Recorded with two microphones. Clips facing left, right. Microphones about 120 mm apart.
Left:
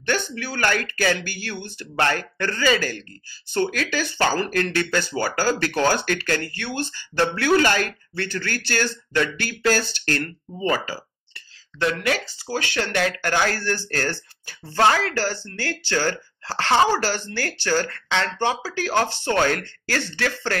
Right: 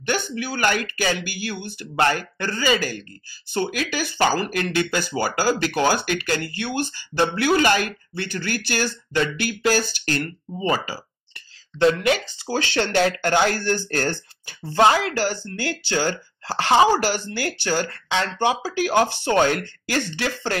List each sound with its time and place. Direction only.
0.0 s speech: 15° right (ahead or behind)